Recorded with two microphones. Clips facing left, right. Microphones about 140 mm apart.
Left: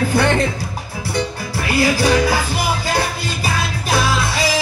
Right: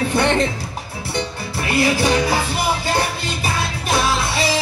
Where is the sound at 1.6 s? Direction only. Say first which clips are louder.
Left 1 dB; 25° right (ahead or behind).